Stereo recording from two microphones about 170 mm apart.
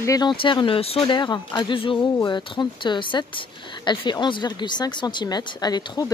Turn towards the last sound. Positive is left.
turn(degrees=25)  # may be behind; listen again after turning